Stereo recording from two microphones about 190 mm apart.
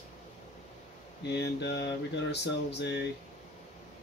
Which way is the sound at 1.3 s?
65° left (ahead or behind).